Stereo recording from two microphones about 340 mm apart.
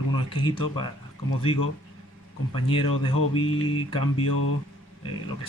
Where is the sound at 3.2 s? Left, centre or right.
Left.